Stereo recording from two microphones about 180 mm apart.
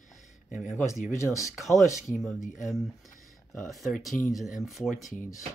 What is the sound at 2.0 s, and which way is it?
Speech, centre (ahead or behind).